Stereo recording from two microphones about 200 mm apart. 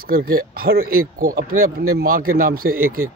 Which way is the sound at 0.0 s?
50° right (ahead or behind).